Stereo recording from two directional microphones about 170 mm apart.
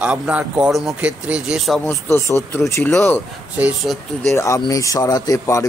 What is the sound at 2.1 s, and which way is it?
Speech, 15° left (ahead or behind).